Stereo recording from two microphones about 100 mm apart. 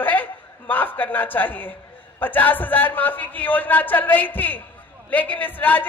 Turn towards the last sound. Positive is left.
turn(degrees=20)  # may be behind; listen again after turning